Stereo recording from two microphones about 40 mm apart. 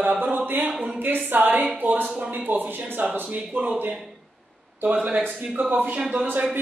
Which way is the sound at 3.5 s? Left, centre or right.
Right.